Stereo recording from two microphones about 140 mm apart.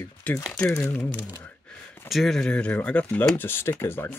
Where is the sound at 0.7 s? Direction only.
15° left (ahead or behind).